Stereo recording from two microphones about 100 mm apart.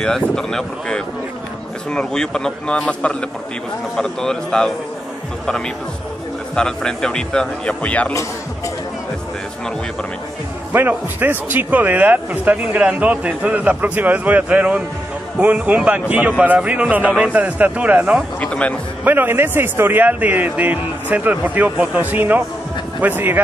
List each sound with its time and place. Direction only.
0.0 s speech: 5° left (ahead or behind)
6.5 s speech: 10° left (ahead or behind)
10.7 s a man's voice: 20° right (ahead or behind)
18.4 s speech: 10° left (ahead or behind)
19.0 s a man's voice: 20° right (ahead or behind)